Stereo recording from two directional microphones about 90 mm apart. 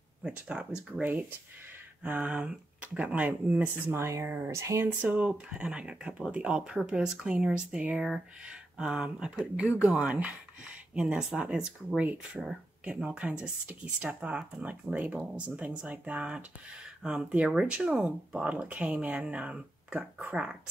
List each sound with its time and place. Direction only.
0.2 s speech: 15° right (ahead or behind)
2.0 s speech: 15° right (ahead or behind); by 4.8 s 30° right (ahead or behind)
5.1 s speech: 15° right (ahead or behind)